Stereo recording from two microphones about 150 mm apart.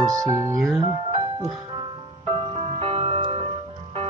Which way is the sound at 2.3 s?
35° right (ahead or behind).